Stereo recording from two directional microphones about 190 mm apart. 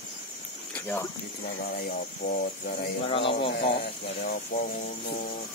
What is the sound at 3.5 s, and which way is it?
Speech, 55° left (ahead or behind).